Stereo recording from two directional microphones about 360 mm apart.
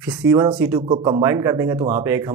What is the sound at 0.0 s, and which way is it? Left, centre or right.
Speech, centre.